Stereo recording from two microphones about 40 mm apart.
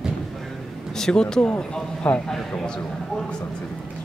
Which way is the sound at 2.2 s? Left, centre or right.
Centre.